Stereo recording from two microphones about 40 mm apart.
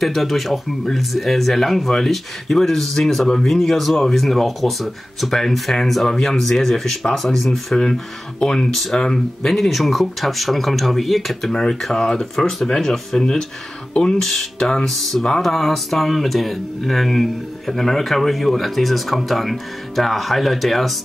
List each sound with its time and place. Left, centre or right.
0.0 s speech: centre
7.7 s speech: centre
9.5 s speech: centre
11.5 s speech: centre
14.2 s speech: centre